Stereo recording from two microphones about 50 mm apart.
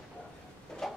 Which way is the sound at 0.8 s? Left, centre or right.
Centre.